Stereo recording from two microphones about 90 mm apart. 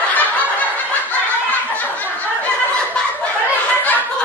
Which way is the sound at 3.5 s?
20° left (ahead or behind).